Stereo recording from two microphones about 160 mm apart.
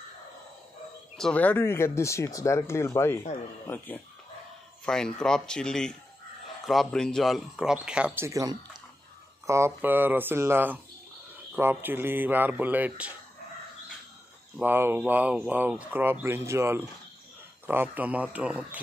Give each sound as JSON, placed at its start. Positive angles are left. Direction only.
{"t": 1.1, "sound": "speech", "side_deg": 5}
{"t": 14.6, "sound": "speech", "side_deg": -15}